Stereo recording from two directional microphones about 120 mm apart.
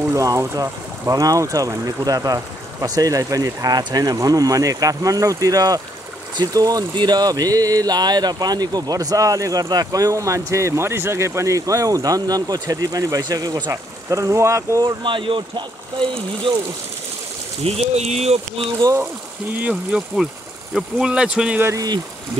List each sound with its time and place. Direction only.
0.1 s speech: 25° right (ahead or behind)
15.0 s speech: 45° right (ahead or behind)
17.6 s speech: 60° right (ahead or behind)
19.6 s speech: 10° right (ahead or behind)
21.6 s speech: 30° right (ahead or behind)